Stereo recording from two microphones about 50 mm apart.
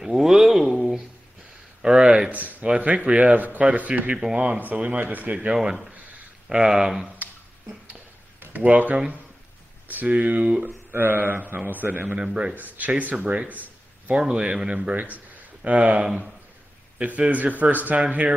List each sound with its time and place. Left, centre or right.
0.0 s a sound: centre
1.8 s a sound: centre
2.6 s speech: right
3.3 s speech: right
5.5 s speech: centre
8.4 s speech: right
10.9 s speech: right
12.2 s speech: centre
12.5 s speech: right
13.5 s a sound: right
14.1 s speech: centre; by 18.0 s right